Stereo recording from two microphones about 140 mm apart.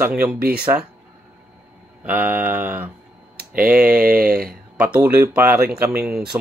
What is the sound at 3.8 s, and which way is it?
Mantra, 90° right.